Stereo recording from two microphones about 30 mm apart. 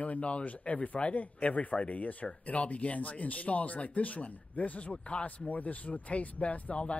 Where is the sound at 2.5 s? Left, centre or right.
Left.